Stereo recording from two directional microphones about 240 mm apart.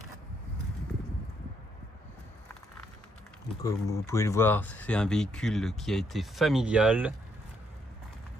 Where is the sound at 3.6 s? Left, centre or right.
Centre.